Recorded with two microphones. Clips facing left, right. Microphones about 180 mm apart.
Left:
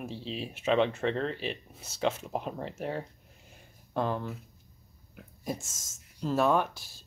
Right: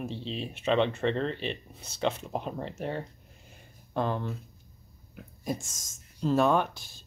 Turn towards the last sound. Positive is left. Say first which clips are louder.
# right 1 dB
turn(degrees=5)  # may be behind; listen again after turning